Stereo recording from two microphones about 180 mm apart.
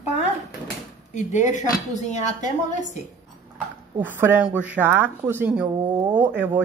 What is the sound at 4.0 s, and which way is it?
Speech, 10° right (ahead or behind).